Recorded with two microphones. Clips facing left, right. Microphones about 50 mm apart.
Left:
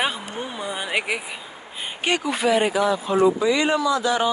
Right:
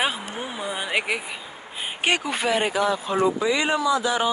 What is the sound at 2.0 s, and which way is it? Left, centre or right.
Speech, right.